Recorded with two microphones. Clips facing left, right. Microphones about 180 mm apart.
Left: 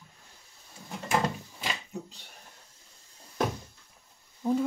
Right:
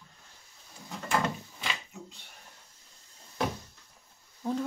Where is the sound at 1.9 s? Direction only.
35° left (ahead or behind).